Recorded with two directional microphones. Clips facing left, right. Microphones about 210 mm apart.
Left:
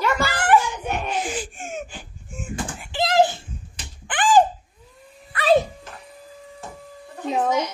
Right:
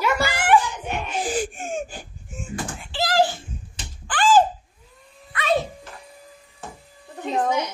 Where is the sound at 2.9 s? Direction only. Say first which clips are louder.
Left 2 dB; 20° left (ahead or behind).